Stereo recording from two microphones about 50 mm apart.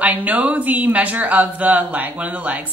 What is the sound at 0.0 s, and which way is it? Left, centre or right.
Speech, right.